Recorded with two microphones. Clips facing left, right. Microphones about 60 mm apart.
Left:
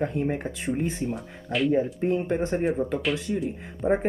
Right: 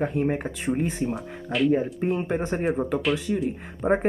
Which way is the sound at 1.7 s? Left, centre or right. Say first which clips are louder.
Even; centre.